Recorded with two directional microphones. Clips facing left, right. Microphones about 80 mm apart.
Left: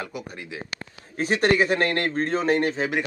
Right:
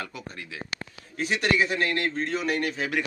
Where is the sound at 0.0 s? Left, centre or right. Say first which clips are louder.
Left 3 dB; centre.